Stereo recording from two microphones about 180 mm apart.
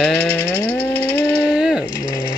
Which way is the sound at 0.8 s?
15° right (ahead or behind).